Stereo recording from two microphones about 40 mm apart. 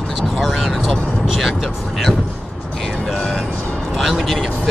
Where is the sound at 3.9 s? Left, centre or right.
Centre.